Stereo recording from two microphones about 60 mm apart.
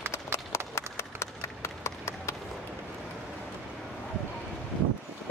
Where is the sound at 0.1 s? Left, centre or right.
Left.